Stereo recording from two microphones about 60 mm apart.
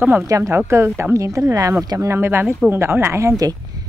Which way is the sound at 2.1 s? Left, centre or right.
Right.